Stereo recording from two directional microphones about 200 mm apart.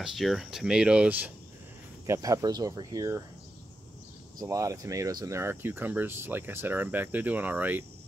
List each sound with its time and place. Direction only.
0.0 s speech: centre (ahead or behind)
2.0 s speech: 15° right (ahead or behind)
4.4 s speech: 15° right (ahead or behind)